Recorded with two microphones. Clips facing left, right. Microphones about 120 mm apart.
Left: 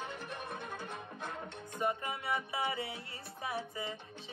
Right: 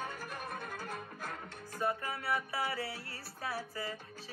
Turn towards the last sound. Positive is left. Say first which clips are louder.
# even
turn(degrees=20)  # may be behind; listen again after turning